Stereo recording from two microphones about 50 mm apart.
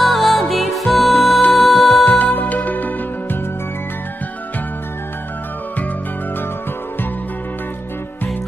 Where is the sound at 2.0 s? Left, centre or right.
Left.